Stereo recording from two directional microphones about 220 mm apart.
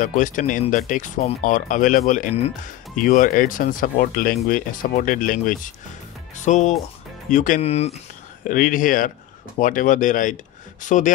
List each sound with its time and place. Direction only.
0.0 s speech: 35° left (ahead or behind)